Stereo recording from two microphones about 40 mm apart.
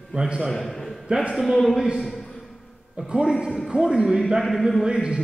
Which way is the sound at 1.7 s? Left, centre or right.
Centre.